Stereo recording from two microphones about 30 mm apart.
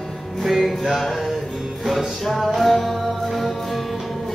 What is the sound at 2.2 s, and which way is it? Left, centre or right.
Music, centre.